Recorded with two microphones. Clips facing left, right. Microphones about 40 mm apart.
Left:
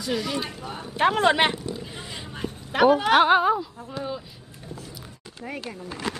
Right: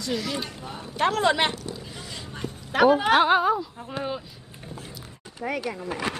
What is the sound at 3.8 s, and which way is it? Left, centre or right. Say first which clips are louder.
Speech: right 1 dB; right.